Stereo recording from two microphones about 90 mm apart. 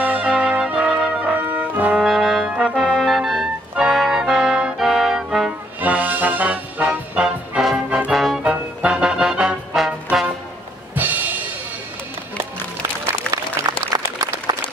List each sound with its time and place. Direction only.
0.0 s brass instrument: 15° right (ahead or behind)
2.0 s brass instrument: centre (ahead or behind)
2.4 s trombone: 15° right (ahead or behind)
2.7 s music: 5° left (ahead or behind)
5.8 s music: 20° right (ahead or behind)
8.1 s music: centre (ahead or behind)
8.5 s music: 10° right (ahead or behind)
11.0 s music: 20° right (ahead or behind)
13.3 s applause: 45° right (ahead or behind)